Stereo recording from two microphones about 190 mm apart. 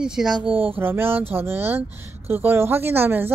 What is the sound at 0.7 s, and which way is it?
Speech, 10° right (ahead or behind).